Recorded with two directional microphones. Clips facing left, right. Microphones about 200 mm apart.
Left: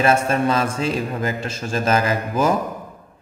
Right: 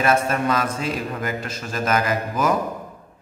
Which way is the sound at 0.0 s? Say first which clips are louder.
Left 2 dB; 30° left (ahead or behind).